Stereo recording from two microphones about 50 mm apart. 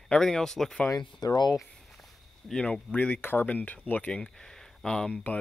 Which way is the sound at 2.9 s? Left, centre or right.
Left.